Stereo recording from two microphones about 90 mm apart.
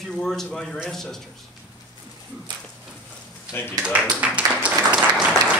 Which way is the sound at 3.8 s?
15° right (ahead or behind).